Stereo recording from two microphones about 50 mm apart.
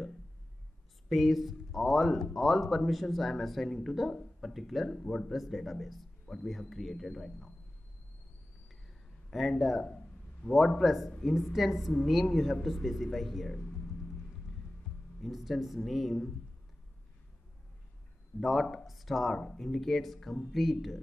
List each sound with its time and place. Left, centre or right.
1.0 s speech: centre
4.9 s speech: centre
5.3 s speech: centre
9.3 s speech: centre
10.4 s a man's voice: left
10.8 s speech: centre
15.2 s speech: centre
18.4 s speech: centre